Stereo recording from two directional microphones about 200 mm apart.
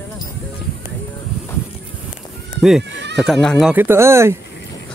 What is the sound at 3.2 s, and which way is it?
Speech, centre (ahead or behind).